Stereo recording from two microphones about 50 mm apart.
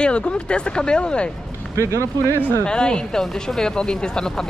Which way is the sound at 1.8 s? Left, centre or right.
Right.